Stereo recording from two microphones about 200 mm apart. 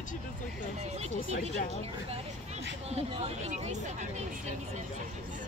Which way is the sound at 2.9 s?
30° right (ahead or behind).